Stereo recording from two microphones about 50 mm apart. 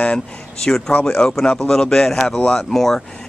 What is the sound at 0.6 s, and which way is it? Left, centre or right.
A man's voice, centre.